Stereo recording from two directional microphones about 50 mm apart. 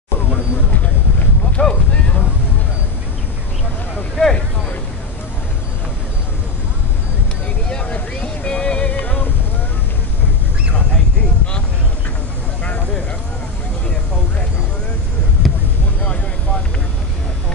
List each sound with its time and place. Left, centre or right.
1.6 s a sound: centre
4.2 s vehicle: left
7.8 s music: left
15.4 s basketball bounce: centre